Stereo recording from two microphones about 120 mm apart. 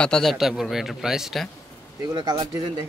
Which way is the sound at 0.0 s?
5° left (ahead or behind).